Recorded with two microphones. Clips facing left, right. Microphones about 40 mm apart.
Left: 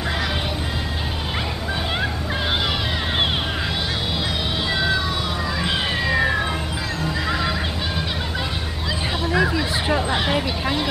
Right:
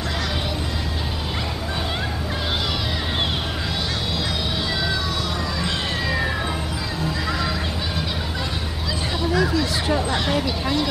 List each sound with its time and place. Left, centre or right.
5.6 s police car: centre
7.1 s neigh: centre
9.2 s a sound: centre